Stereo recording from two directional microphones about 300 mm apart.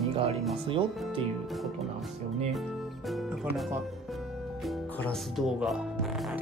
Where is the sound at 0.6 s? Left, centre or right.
Centre.